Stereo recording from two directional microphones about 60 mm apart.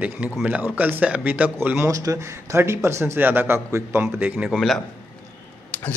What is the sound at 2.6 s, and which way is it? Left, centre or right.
Speech, right.